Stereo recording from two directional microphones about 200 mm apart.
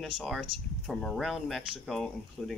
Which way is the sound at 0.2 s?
Centre (ahead or behind).